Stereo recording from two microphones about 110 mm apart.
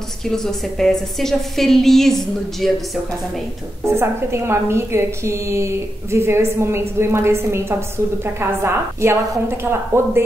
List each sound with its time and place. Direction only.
0.3 s a woman's voice: 5° left (ahead or behind)
3.8 s a woman's voice: 25° right (ahead or behind)